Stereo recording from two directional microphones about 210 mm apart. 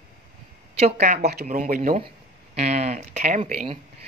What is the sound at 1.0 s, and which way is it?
Speech, 40° right (ahead or behind).